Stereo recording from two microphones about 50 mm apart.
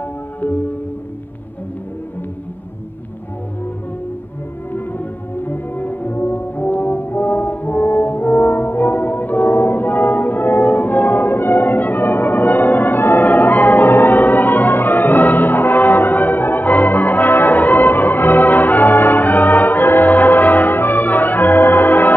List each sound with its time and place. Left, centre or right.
4.7 s music: left